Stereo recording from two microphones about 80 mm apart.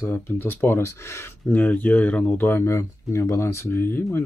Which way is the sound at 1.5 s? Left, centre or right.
Centre.